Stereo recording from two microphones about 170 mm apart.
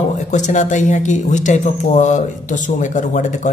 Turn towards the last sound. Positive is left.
turn(degrees=45)  # may be behind; listen again after turning